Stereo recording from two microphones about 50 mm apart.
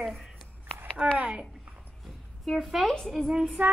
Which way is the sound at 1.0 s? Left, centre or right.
Right.